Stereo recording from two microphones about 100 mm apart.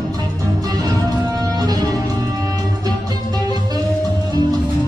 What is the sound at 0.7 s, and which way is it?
Music, 35° right (ahead or behind).